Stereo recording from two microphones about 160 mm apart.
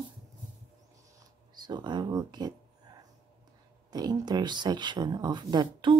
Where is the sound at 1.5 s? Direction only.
25° right (ahead or behind).